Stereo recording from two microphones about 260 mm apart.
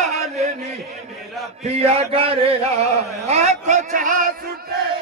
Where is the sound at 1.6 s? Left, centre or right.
Right.